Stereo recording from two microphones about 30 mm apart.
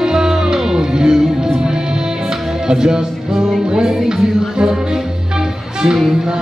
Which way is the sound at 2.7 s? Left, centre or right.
Right.